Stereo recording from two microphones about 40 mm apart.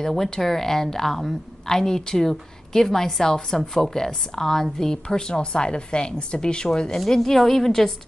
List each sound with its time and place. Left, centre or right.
0.0 s a woman's voice: centre
7.1 s a woman's voice: centre